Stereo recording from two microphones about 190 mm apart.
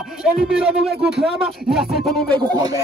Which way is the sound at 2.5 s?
20° right (ahead or behind).